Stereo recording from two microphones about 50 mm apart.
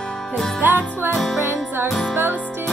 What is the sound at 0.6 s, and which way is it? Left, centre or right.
Music, right.